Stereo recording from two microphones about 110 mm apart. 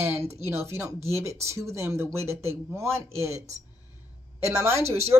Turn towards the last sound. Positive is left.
turn(degrees=-70)  # may be behind; listen again after turning